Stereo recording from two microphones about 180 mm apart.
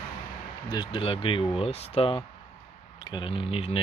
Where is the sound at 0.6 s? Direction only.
25° left (ahead or behind).